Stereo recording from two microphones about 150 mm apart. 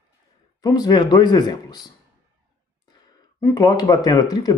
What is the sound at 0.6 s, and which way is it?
Speech, 25° left (ahead or behind).